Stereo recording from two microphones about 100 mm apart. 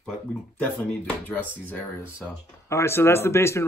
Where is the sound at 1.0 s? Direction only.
15° left (ahead or behind).